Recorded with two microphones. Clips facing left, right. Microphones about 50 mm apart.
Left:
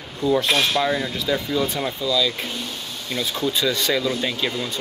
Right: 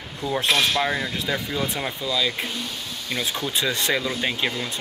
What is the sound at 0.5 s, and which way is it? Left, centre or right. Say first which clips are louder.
Speech: left 1 dB; centre.